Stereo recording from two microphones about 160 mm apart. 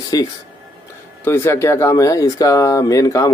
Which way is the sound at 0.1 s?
25° left (ahead or behind).